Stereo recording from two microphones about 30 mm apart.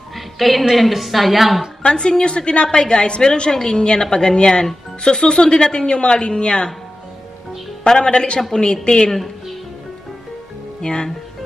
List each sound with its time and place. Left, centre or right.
0.4 s a woman's voice: centre
1.8 s a woman's voice: left
7.9 s a woman's voice: left
10.8 s speech: left